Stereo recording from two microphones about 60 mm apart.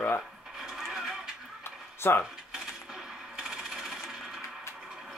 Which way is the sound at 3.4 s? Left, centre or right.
Centre.